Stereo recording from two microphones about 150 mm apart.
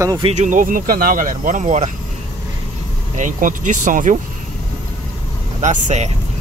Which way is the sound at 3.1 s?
55° right (ahead or behind).